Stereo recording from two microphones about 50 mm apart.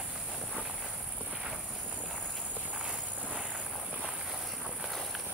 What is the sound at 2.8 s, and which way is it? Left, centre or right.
Walk, centre.